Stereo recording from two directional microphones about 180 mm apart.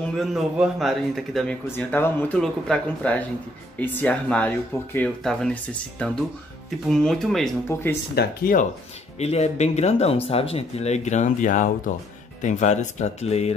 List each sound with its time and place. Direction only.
0.0 s speech: centre (ahead or behind)
8.1 s speech: 55° left (ahead or behind)
9.2 s speech: 35° left (ahead or behind)